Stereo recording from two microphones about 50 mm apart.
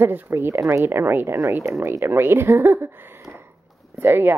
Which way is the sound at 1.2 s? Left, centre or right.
Right.